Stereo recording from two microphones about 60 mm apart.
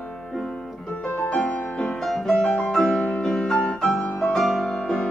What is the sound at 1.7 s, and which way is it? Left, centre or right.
Music, centre.